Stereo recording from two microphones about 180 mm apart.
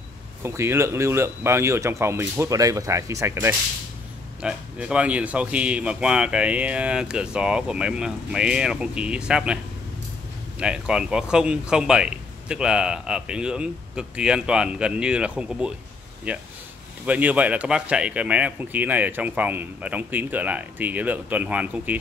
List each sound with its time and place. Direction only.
0.4 s speech: 15° right (ahead or behind)
10.6 s speech: 5° right (ahead or behind)